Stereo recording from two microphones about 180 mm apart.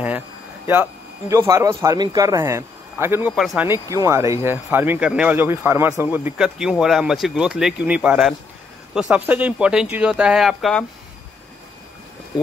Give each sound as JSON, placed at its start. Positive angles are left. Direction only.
{"t": 1.3, "sound": "speech", "side_deg": -15}
{"t": 3.3, "sound": "speech", "side_deg": 0}
{"t": 3.6, "sound": "speech", "side_deg": -15}